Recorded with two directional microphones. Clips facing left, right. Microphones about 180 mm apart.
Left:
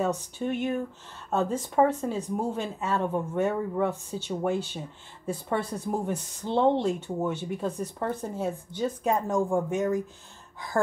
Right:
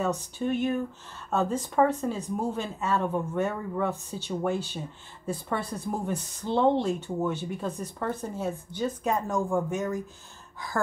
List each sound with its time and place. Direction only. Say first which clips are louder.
0.0 s speech: even; 20° left (ahead or behind)